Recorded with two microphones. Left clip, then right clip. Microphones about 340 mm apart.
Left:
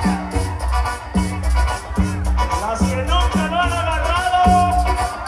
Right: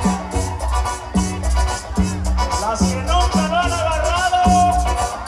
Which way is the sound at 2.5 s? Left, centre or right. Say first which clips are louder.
Right 1 dB; right.